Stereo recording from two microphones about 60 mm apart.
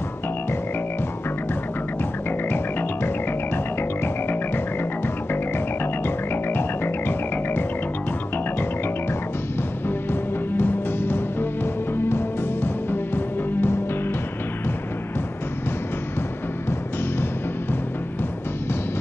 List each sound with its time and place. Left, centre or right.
2.2 s music: left
6.0 s music: left
10.6 s music: left